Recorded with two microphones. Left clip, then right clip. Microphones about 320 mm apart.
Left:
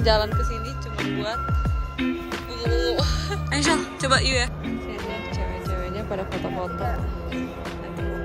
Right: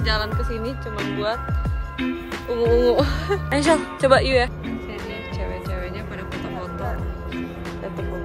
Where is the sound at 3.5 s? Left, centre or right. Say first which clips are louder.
Right 3 dB; centre.